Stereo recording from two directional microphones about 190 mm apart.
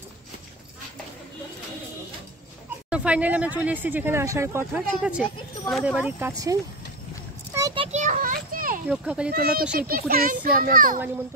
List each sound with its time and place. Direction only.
2.9 s speech: 5° right (ahead or behind)
7.5 s a sound: 20° right (ahead or behind); by 8.8 s 45° right (ahead or behind)
8.8 s a child's voice: 5° right (ahead or behind)
9.3 s a child's voice: 50° right (ahead or behind)